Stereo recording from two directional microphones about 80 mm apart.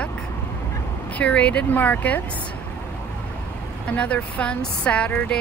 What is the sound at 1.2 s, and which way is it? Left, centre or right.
Speech, centre.